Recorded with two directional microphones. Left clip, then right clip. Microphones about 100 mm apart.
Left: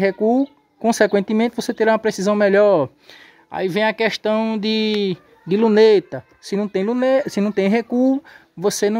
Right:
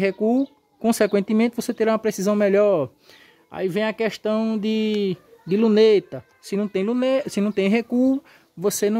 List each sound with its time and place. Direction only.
0.0 s speech: 25° right (ahead or behind)
7.9 s speech: 40° right (ahead or behind)